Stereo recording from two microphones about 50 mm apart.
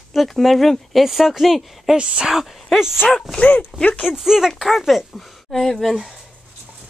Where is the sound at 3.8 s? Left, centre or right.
Left.